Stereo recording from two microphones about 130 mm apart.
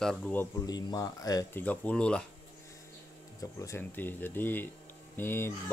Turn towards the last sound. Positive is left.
turn(degrees=15)  # may be behind; listen again after turning